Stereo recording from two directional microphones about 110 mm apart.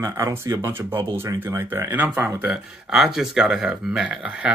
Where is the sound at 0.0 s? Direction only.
25° right (ahead or behind).